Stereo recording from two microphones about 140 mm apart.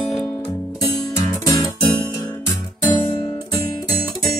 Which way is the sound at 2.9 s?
30° left (ahead or behind).